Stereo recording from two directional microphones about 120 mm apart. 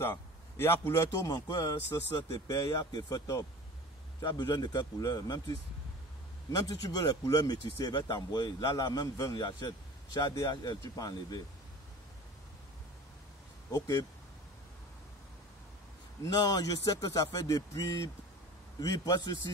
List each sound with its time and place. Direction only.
0.6 s speech: 20° left (ahead or behind)
1.3 s a man's voice: 30° left (ahead or behind)
13.7 s speech: 25° left (ahead or behind)
16.2 s a man's voice: 30° left (ahead or behind)